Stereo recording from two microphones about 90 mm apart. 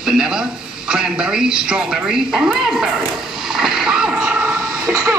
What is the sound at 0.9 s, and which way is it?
Speech, 10° right (ahead or behind).